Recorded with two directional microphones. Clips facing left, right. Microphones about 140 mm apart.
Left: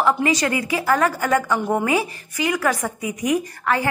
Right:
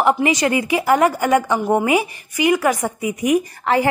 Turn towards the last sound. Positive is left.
turn(degrees=-20)  # may be behind; listen again after turning